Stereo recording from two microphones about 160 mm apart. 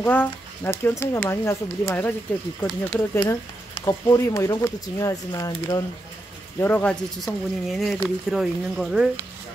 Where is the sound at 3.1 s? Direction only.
30° left (ahead or behind).